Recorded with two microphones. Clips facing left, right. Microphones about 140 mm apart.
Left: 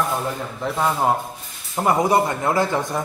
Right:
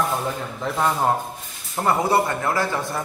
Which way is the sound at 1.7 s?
15° left (ahead or behind).